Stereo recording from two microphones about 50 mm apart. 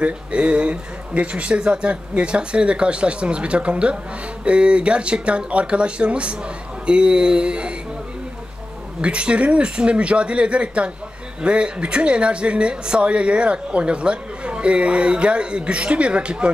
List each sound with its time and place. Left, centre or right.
0.0 s speech: right
9.0 s speech: right